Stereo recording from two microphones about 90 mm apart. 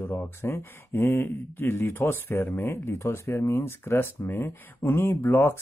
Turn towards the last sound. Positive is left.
turn(degrees=25)  # may be behind; listen again after turning